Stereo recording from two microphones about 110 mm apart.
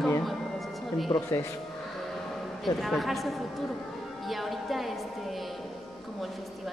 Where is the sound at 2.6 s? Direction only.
Centre (ahead or behind).